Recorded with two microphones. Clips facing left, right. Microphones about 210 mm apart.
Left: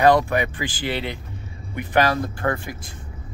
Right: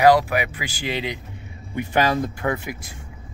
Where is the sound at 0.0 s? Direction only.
10° right (ahead or behind).